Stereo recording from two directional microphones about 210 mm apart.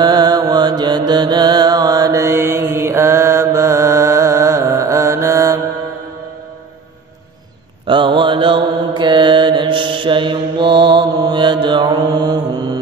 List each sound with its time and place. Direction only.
0.0 s mantra: 20° right (ahead or behind)
7.8 s mantra: 25° right (ahead or behind)